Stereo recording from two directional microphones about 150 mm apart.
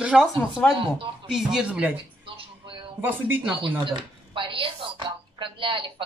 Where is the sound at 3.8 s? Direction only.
35° right (ahead or behind).